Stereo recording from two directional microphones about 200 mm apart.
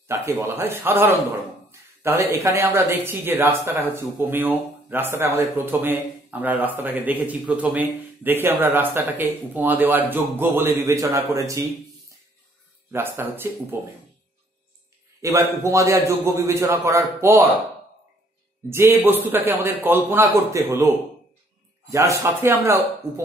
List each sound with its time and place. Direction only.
0.1 s speech: 15° right (ahead or behind)
12.9 s speech: 10° right (ahead or behind)
15.2 s speech: 15° right (ahead or behind)
18.7 s a man's voice: 10° right (ahead or behind)